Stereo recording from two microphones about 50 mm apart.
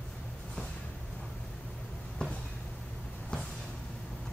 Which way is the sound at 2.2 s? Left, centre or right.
Centre.